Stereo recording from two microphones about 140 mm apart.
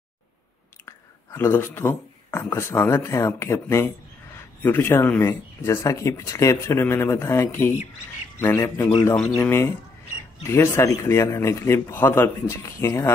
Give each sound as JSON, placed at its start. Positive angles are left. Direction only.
{"t": 0.8, "sound": "speech", "side_deg": 20}
{"t": 9.1, "sound": "speech", "side_deg": 0}
{"t": 9.4, "sound": "a man's voice", "side_deg": 15}